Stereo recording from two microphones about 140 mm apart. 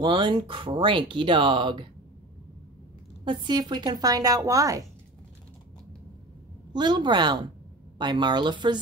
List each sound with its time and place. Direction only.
0.0 s speech: 35° right (ahead or behind)
3.3 s speech: 30° right (ahead or behind)
6.7 s speech: 30° right (ahead or behind)